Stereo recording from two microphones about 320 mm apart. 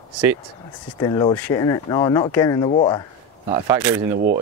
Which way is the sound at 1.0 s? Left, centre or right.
Centre.